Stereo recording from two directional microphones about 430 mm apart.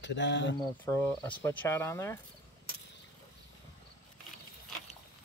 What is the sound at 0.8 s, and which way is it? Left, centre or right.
Speech, centre.